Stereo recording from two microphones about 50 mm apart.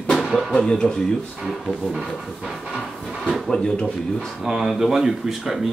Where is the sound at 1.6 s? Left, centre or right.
Centre.